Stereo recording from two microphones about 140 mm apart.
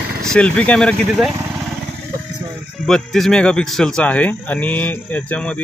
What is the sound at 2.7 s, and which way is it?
Speech, 5° left (ahead or behind).